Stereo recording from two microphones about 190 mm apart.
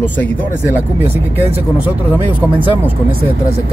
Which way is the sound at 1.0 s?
10° right (ahead or behind).